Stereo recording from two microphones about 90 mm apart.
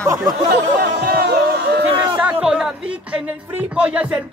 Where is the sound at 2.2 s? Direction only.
15° right (ahead or behind).